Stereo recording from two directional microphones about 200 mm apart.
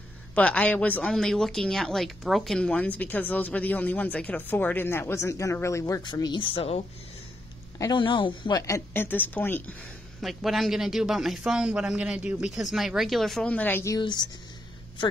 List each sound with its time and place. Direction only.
0.3 s a woman's voice: 5° left (ahead or behind); by 6.8 s 30° left (ahead or behind)
7.8 s a woman's voice: 20° left (ahead or behind)